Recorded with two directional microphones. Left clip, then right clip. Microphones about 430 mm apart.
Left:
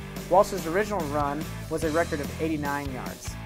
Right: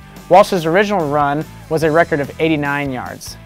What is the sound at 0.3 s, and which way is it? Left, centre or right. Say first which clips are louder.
Speech: right 12 dB; right.